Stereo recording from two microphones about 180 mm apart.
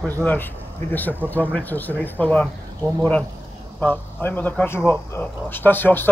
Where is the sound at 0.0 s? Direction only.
10° left (ahead or behind).